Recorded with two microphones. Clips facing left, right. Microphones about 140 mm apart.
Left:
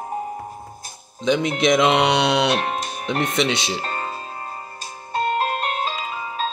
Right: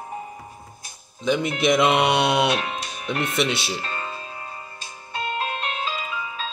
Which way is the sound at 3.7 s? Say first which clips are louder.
Left 3 dB; 40° left (ahead or behind).